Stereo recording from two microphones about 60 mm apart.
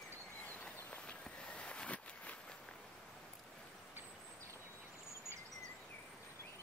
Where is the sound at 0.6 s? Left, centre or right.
Left.